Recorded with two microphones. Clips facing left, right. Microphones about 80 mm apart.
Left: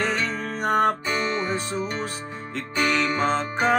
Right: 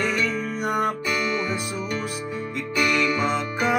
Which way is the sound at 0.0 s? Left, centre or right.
Left.